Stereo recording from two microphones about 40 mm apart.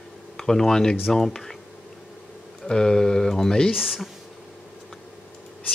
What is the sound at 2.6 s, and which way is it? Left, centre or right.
Speech, centre.